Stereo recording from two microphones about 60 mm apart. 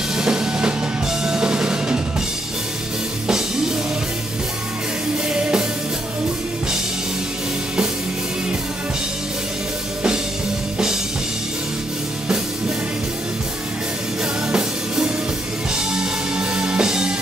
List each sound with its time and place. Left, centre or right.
0.1 s music: centre
3.3 s music: centre
5.3 s music: centre
14.5 s music: centre